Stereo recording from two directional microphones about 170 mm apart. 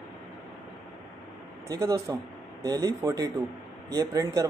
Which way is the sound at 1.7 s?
20° right (ahead or behind).